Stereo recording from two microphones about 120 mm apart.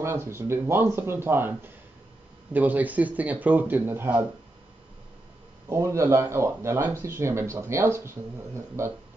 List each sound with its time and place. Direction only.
0.0 s speech: 20° right (ahead or behind)
5.7 s speech: 25° right (ahead or behind)